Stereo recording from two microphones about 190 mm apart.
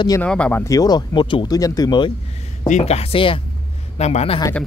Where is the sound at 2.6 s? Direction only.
35° left (ahead or behind).